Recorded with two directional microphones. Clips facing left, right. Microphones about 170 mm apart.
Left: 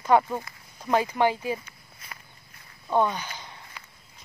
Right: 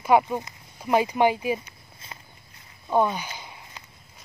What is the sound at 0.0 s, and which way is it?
Speech, 15° right (ahead or behind).